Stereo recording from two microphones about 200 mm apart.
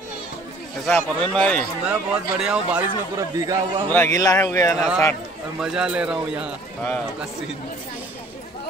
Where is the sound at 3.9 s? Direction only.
15° left (ahead or behind).